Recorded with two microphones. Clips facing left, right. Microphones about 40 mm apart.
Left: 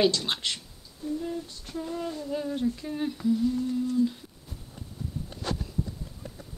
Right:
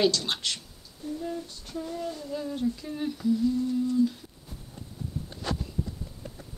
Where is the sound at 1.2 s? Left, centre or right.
Centre.